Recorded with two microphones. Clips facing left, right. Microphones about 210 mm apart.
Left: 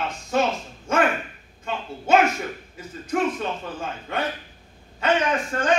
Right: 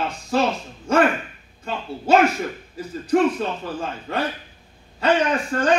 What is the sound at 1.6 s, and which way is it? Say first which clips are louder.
Speech: right 4 dB; 35° right (ahead or behind).